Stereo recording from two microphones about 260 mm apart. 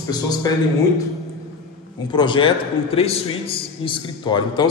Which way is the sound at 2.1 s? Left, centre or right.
Centre.